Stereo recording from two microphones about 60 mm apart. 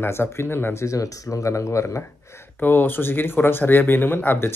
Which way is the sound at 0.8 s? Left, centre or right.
Left.